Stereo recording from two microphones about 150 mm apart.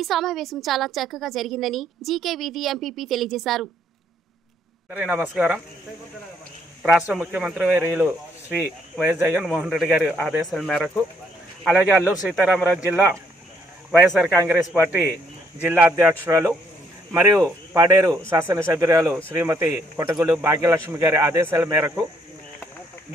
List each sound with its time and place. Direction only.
0.0 s a woman's voice: centre (ahead or behind)
4.9 s speech: 10° right (ahead or behind)
6.8 s a woman's voice: 5° right (ahead or behind)
11.7 s speech: 10° right (ahead or behind)
14.3 s speech: 15° right (ahead or behind)